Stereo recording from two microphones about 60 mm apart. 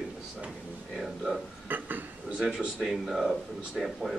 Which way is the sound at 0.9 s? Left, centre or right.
Centre.